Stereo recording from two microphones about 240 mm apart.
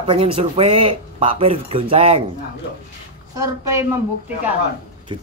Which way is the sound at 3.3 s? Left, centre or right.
Centre.